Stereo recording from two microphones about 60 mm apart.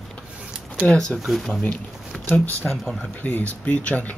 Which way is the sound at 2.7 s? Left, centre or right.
Centre.